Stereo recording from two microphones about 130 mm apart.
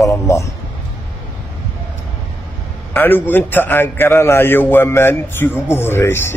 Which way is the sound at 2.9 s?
15° left (ahead or behind).